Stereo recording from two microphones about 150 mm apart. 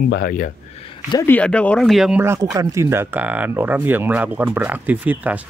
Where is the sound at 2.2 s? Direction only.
20° right (ahead or behind).